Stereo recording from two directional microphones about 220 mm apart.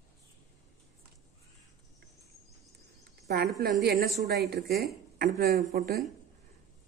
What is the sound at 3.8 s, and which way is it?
Speech, 45° right (ahead or behind).